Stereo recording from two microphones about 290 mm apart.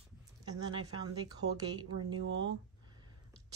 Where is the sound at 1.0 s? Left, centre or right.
Centre.